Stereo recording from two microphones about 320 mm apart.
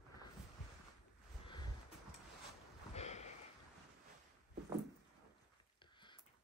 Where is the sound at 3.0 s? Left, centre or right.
Left.